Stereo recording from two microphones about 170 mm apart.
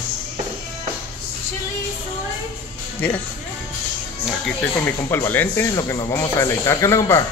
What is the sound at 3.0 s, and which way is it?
Speech, 10° left (ahead or behind).